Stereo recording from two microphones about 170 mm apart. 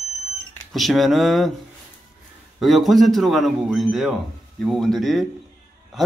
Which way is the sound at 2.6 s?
Centre (ahead or behind).